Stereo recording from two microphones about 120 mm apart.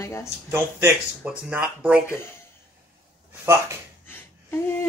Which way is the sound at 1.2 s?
10° right (ahead or behind).